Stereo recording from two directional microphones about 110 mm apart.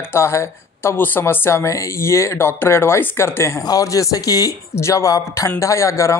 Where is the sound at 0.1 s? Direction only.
25° left (ahead or behind).